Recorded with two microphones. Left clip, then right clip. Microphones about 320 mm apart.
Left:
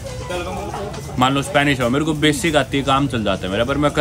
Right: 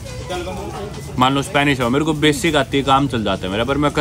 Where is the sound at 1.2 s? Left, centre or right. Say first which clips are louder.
Right 1 dB; centre.